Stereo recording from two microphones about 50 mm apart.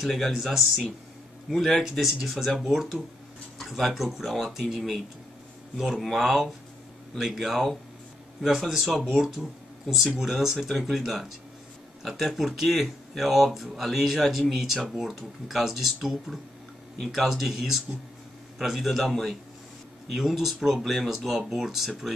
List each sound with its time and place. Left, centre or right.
0.0 s speech: centre